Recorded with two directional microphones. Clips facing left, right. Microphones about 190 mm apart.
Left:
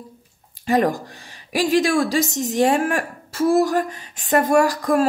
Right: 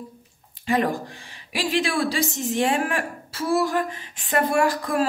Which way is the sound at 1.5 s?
45° left (ahead or behind).